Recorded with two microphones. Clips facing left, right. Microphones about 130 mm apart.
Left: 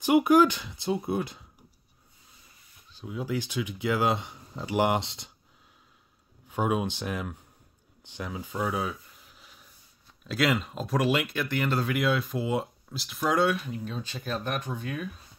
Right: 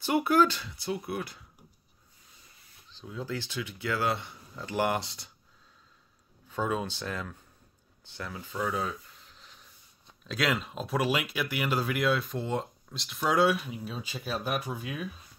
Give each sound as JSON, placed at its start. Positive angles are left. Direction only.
{"t": 0.0, "sound": "speech", "side_deg": 15}
{"t": 2.9, "sound": "speech", "side_deg": 10}
{"t": 6.5, "sound": "speech", "side_deg": 15}
{"t": 8.0, "sound": "a sound", "side_deg": 15}
{"t": 10.2, "sound": "speech", "side_deg": 0}